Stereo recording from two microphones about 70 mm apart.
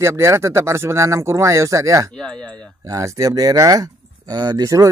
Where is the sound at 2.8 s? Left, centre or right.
Right.